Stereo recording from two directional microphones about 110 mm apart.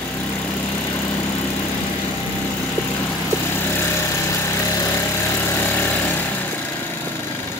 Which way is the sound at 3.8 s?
25° left (ahead or behind).